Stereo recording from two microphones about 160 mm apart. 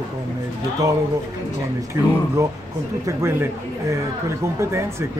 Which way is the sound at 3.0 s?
15° right (ahead or behind).